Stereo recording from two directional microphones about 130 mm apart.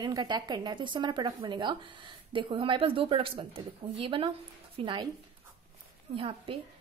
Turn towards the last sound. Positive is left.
turn(degrees=-45)  # may be behind; listen again after turning